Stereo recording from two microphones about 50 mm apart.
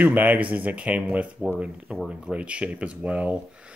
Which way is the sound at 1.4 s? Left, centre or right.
Centre.